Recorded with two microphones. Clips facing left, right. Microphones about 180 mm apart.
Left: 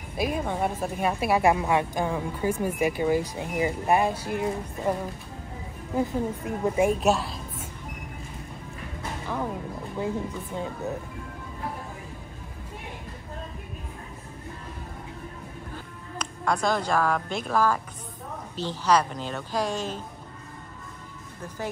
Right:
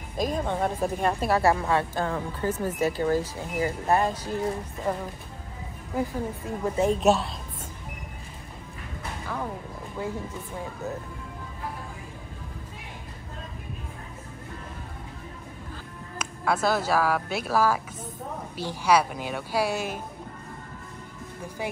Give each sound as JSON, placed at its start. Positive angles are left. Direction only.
{"t": 0.2, "sound": "a woman's voice", "side_deg": 10}
{"t": 5.9, "sound": "a woman's voice", "side_deg": 20}
{"t": 7.0, "sound": "a woman's voice", "side_deg": 0}
{"t": 16.2, "sound": "a woman's voice", "side_deg": -5}